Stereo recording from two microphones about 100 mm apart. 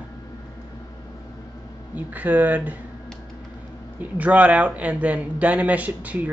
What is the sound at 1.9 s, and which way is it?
Speech, 15° right (ahead or behind).